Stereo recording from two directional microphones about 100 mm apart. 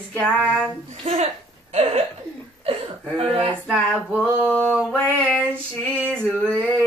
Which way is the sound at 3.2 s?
65° right (ahead or behind).